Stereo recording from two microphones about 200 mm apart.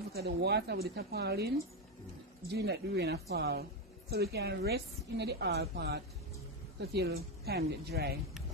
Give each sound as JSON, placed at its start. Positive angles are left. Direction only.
{"t": 0.1, "sound": "speech", "side_deg": -55}
{"t": 2.5, "sound": "a woman's voice", "side_deg": -55}